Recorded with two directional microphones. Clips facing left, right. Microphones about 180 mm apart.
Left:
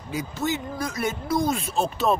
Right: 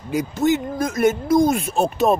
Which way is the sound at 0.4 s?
45° right (ahead or behind).